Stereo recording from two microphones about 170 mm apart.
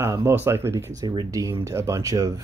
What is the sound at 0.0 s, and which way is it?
Speech, 15° right (ahead or behind).